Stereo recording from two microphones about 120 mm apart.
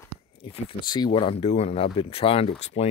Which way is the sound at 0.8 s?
35° left (ahead or behind).